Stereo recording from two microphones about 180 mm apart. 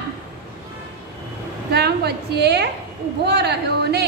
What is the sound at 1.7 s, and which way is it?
A woman's voice, 65° right (ahead or behind).